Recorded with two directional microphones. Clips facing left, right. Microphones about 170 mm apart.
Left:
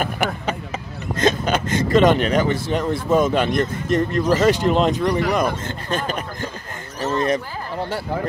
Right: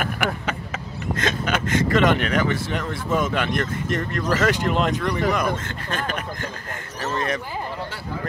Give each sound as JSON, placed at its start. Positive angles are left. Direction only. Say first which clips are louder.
{"t": 1.1, "sound": "speech", "louder": "left 5 dB", "side_deg": 35}